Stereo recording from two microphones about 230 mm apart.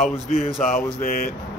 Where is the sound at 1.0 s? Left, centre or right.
Left.